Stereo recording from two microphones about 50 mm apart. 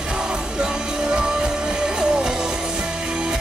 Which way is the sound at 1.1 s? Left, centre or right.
Centre.